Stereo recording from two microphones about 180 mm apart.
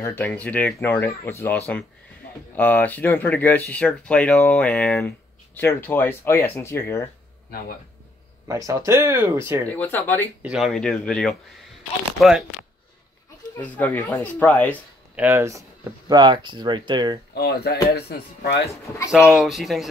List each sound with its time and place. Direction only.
0.0 s speech: 10° left (ahead or behind)
8.5 s speech: 20° right (ahead or behind)
9.7 s speech: 10° left (ahead or behind)
10.4 s speech: 5° right (ahead or behind)
13.6 s speech: 10° left (ahead or behind)
15.1 s speech: 15° right (ahead or behind)
17.3 s speech: 65° left (ahead or behind)
19.1 s speech: 5° right (ahead or behind)